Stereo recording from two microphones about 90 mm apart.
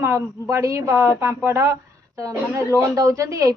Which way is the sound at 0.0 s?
35° right (ahead or behind).